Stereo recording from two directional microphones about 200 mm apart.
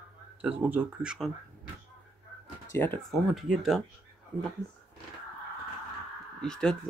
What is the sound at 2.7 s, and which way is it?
Speech, 10° left (ahead or behind).